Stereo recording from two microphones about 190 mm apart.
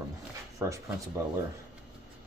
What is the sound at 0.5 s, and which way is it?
Speech, 15° right (ahead or behind).